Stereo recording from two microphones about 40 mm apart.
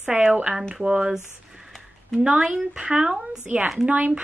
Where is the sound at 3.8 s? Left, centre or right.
Right.